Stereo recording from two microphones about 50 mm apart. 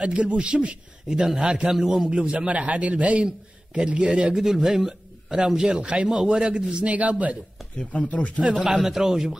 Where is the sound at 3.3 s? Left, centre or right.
Centre.